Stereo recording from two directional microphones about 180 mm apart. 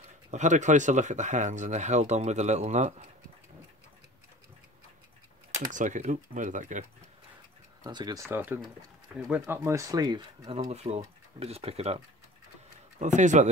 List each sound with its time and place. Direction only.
0.3 s speech: 40° right (ahead or behind)
5.7 s speech: 45° right (ahead or behind)
7.8 s speech: 20° right (ahead or behind)
10.7 s speech: 35° right (ahead or behind)
13.0 s speech: 45° right (ahead or behind)